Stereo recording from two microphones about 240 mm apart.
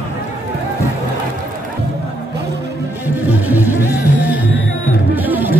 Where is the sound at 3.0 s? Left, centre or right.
Centre.